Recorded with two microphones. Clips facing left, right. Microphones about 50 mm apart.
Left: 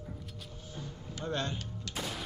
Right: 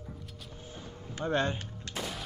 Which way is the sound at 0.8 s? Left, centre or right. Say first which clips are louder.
Right 3 dB; right.